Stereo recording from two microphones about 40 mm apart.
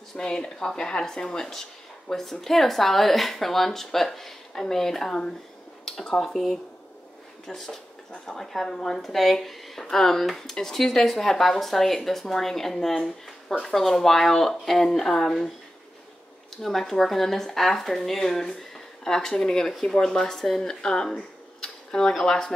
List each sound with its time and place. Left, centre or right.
0.1 s speech: centre
5.9 s a sound: centre
6.2 s speech: centre
16.6 s speech: centre